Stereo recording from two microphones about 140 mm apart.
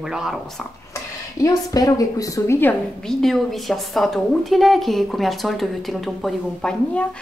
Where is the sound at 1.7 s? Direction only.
25° left (ahead or behind).